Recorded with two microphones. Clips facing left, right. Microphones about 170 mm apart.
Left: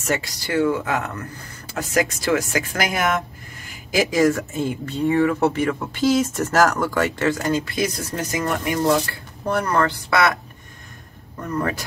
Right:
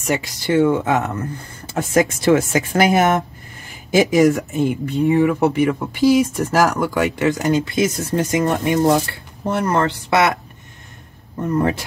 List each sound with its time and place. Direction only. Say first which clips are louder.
0.0 s speech: right 3 dB; 15° right (ahead or behind)
0.5 s speech: right 5 dB; 25° right (ahead or behind)
11.4 s speech: right 6 dB; 25° right (ahead or behind)